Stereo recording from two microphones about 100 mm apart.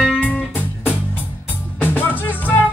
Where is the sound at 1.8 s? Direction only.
20° left (ahead or behind).